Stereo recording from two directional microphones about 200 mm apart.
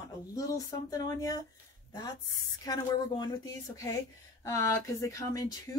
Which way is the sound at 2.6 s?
20° left (ahead or behind).